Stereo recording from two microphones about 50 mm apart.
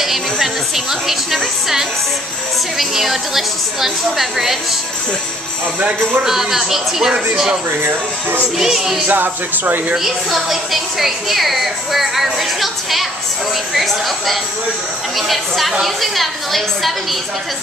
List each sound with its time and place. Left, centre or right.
0.0 s music: centre
2.8 s a woman's voice: centre
6.2 s speech: centre
7.8 s speech: right
8.5 s speech: centre
9.1 s speech: right
9.9 s a woman's voice: centre